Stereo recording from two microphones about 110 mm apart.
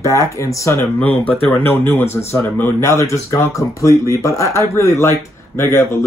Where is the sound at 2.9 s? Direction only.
25° left (ahead or behind).